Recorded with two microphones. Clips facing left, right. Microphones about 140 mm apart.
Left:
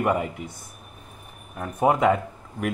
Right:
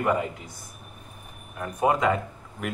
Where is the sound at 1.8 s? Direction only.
20° left (ahead or behind).